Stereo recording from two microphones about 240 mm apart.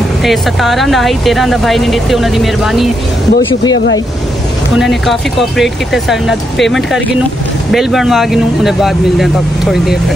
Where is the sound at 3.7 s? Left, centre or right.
Left.